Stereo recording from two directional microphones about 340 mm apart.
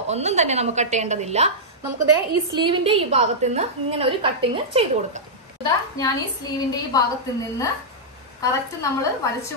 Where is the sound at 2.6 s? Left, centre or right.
Centre.